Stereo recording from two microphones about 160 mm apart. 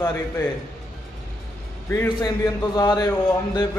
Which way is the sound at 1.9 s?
20° left (ahead or behind).